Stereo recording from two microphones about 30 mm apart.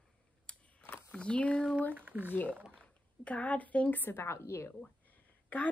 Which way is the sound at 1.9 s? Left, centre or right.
Right.